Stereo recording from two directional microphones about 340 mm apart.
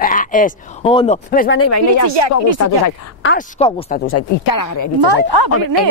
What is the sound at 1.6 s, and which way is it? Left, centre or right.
Speech, left.